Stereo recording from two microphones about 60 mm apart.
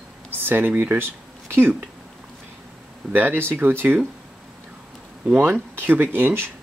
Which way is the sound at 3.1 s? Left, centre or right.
Right.